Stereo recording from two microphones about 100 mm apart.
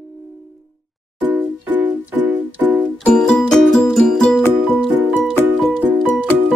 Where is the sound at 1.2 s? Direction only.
15° right (ahead or behind).